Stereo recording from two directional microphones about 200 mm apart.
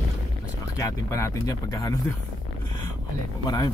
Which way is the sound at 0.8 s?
15° left (ahead or behind).